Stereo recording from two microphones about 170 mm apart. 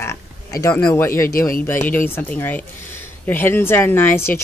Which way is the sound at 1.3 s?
55° left (ahead or behind).